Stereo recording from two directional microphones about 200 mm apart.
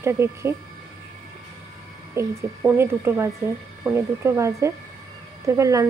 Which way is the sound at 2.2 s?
15° right (ahead or behind).